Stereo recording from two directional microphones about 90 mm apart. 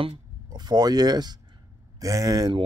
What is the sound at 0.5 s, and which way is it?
Speech, 55° right (ahead or behind).